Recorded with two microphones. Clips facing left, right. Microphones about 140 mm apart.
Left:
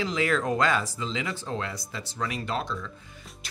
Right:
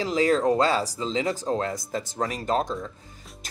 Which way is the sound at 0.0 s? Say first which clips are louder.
Right 5 dB; 35° right (ahead or behind).